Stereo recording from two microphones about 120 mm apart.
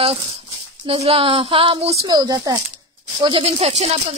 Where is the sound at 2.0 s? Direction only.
35° right (ahead or behind).